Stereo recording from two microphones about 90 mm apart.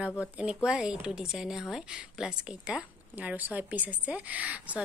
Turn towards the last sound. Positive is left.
turn(degrees=-15)  # may be behind; listen again after turning